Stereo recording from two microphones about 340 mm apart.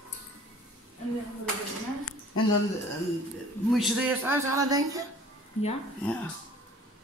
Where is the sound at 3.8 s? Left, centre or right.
Centre.